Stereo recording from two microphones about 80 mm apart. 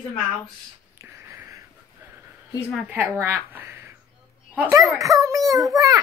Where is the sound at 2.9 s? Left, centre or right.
Right.